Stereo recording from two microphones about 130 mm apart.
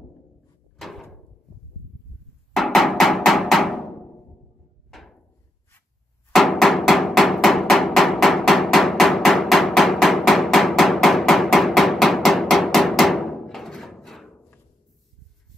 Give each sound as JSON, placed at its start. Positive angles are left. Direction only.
{"t": 0.7, "sound": "door", "side_deg": 0}
{"t": 2.5, "sound": "music", "side_deg": 0}
{"t": 6.3, "sound": "hammer", "side_deg": 0}